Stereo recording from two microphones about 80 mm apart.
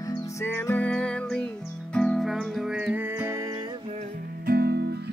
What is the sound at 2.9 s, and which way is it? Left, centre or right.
Music, right.